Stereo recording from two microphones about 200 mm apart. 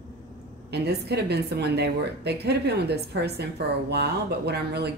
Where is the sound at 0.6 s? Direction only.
55° right (ahead or behind).